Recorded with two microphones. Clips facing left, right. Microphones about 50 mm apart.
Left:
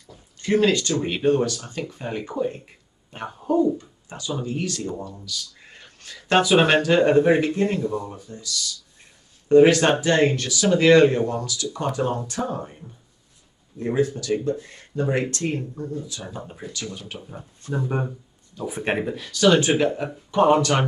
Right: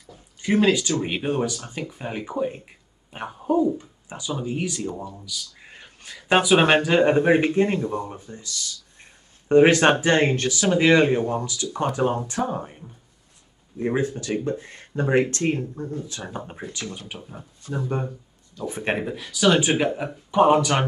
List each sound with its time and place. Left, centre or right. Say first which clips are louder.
0.0 s a sound: right 1 dB; centre
1.0 s speech: left 4 dB; centre
12.4 s speech: right 1 dB; centre
13.7 s speech: left 1 dB; right
17.1 s speech: left 1 dB; centre
17.7 s speech: left 1 dB; centre
18.6 s speech: left 1 dB; centre